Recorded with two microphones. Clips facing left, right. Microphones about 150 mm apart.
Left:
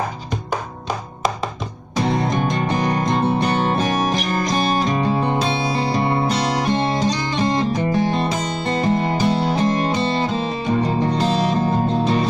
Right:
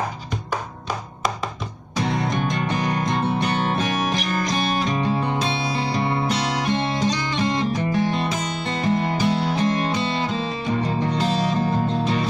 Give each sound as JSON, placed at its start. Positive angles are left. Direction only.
{"t": 2.0, "sound": "music", "side_deg": 30}